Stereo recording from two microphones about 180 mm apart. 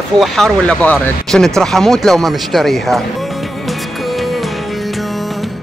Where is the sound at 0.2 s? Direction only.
Centre (ahead or behind).